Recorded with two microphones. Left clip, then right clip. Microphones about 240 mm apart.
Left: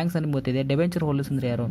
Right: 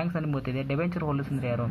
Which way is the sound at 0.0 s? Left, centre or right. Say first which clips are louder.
Left 4 dB; left.